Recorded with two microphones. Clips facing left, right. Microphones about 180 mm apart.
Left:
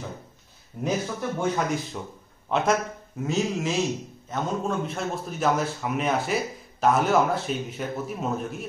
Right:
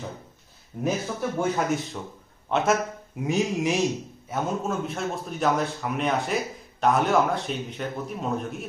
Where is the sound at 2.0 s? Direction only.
5° left (ahead or behind).